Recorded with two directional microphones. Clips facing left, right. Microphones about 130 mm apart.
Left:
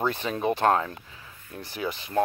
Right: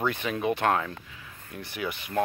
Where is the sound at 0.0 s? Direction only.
30° left (ahead or behind).